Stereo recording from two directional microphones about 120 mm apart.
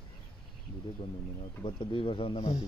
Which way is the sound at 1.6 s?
45° left (ahead or behind).